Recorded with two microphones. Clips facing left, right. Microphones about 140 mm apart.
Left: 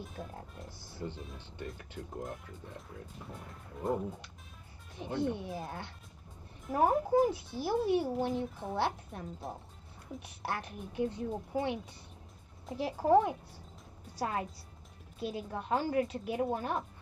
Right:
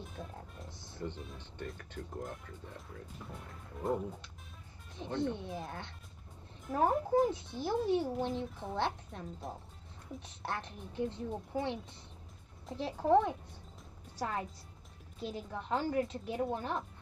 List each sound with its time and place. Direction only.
0.0 s a child's voice: centre (ahead or behind)